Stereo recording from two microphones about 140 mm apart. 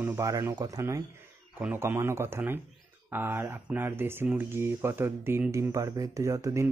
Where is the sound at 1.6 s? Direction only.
10° right (ahead or behind).